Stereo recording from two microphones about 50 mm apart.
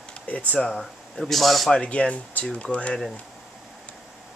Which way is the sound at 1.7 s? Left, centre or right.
Left.